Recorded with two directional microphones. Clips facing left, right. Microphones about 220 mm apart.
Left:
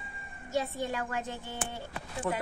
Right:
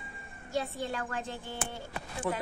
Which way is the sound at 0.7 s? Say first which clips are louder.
Left 2 dB; 15° left (ahead or behind).